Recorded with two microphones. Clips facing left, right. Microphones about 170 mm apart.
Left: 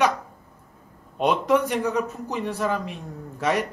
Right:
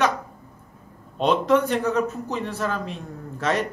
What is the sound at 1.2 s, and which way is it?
A man's voice, 10° left (ahead or behind).